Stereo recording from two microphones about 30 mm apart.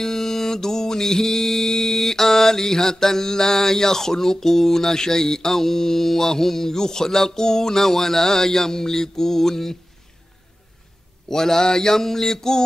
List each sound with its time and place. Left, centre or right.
0.0 s mantra: centre
11.2 s mantra: centre